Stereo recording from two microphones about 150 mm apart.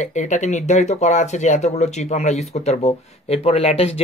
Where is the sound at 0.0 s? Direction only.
55° left (ahead or behind).